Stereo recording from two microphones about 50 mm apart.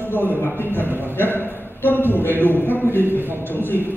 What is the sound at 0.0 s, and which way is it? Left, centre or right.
A man's voice, left.